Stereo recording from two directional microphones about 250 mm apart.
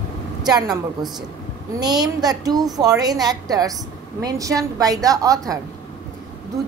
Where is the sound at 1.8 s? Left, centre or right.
Centre.